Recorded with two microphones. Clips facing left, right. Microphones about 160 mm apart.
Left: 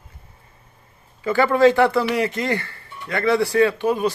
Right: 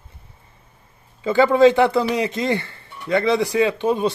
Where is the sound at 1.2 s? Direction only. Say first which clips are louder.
Right 2 dB; 20° right (ahead or behind).